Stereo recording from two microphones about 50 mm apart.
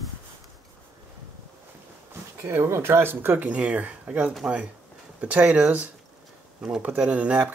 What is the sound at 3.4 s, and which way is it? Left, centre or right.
Speech, right.